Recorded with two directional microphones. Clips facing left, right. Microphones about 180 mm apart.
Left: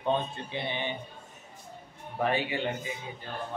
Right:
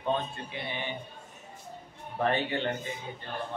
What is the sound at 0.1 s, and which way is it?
Speech, 20° left (ahead or behind).